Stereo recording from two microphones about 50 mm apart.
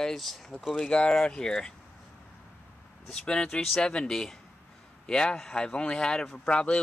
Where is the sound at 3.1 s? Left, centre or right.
Centre.